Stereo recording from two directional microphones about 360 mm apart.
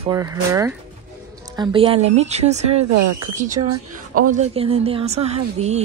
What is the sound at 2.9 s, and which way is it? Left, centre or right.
Speech, right.